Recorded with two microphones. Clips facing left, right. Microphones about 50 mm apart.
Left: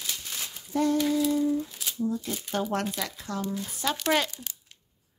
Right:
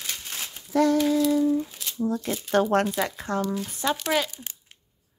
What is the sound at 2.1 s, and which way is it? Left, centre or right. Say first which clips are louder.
Speech: right 4 dB; right.